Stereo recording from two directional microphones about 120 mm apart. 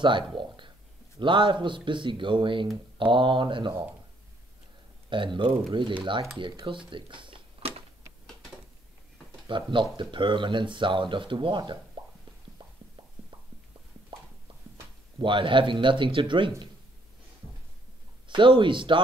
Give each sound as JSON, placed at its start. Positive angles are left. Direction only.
{"t": 0.0, "sound": "a sound", "side_deg": -40}
{"t": 1.2, "sound": "speech", "side_deg": -45}
{"t": 5.1, "sound": "speech", "side_deg": -45}
{"t": 9.5, "sound": "speech", "side_deg": -45}
{"t": 14.1, "sound": "a sound", "side_deg": -45}
{"t": 14.5, "sound": "clip-clop", "side_deg": -45}
{"t": 15.1, "sound": "speech", "side_deg": -45}
{"t": 18.3, "sound": "speech", "side_deg": -45}